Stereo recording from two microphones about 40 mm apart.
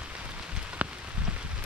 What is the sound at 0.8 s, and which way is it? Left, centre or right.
Rain on surface, right.